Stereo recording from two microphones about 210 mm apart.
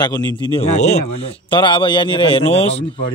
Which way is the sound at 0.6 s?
30° left (ahead or behind).